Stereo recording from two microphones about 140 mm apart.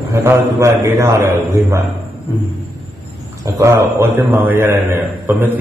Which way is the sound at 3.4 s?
20° right (ahead or behind).